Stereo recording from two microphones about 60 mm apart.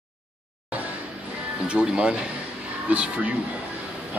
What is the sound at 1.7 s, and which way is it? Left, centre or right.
Speech, centre.